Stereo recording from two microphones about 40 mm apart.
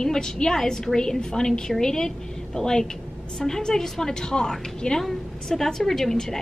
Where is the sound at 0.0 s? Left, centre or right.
Centre.